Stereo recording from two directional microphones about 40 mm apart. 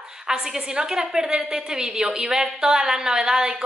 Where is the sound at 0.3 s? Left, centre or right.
Centre.